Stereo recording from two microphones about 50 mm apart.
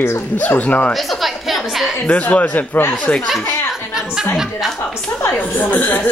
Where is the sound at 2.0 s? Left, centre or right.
Left.